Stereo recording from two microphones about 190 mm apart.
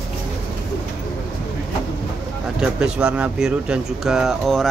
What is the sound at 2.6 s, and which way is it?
Speech, 5° right (ahead or behind).